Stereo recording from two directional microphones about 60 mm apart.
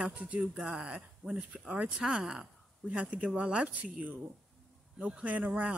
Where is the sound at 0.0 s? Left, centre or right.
Centre.